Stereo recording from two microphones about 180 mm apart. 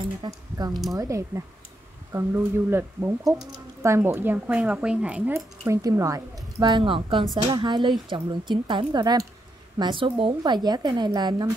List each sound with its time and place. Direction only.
0.2 s a woman's voice: 20° right (ahead or behind)
5.7 s a woman's voice: 20° right (ahead or behind)